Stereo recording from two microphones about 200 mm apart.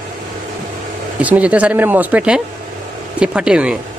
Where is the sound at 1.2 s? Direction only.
5° right (ahead or behind).